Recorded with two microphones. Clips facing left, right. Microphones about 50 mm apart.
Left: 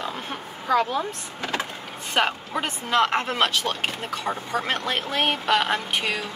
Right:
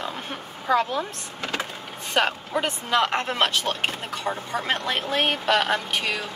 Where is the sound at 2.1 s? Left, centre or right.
Centre.